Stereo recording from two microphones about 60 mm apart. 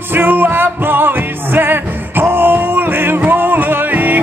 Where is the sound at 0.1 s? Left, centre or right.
Right.